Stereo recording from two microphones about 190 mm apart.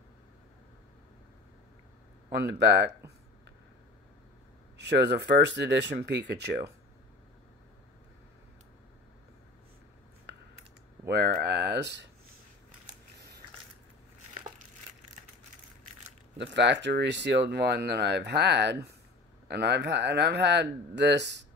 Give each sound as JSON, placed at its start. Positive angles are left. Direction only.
{"t": 2.3, "sound": "speech", "side_deg": -60}
{"t": 4.7, "sound": "speech", "side_deg": -60}
{"t": 11.1, "sound": "speech", "side_deg": -60}
{"t": 16.3, "sound": "speech", "side_deg": -65}